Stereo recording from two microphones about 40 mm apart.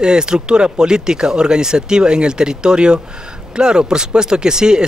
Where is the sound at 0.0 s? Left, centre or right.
Centre.